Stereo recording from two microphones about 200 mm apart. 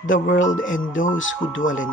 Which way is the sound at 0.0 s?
75° left (ahead or behind).